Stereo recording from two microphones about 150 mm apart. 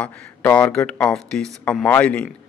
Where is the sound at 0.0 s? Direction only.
10° left (ahead or behind).